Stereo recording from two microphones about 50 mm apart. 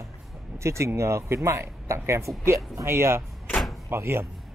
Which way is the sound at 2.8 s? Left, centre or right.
Right.